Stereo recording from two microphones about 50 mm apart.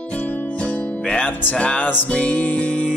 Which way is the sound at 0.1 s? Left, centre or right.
Left.